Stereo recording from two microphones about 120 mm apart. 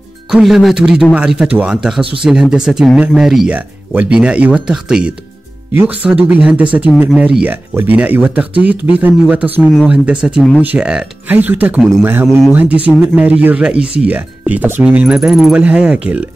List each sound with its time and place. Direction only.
0.3 s speech: 5° right (ahead or behind)
15.1 s speech: centre (ahead or behind)